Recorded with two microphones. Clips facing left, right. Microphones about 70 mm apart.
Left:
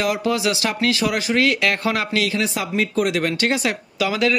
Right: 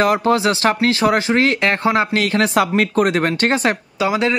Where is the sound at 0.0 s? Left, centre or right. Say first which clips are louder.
Right 5 dB; right.